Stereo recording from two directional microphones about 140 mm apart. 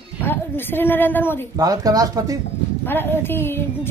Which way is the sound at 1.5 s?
25° right (ahead or behind).